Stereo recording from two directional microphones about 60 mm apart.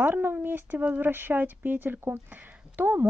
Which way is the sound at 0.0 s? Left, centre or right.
Right.